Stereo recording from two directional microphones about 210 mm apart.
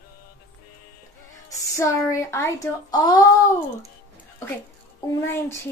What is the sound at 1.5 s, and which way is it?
Speech, 15° left (ahead or behind).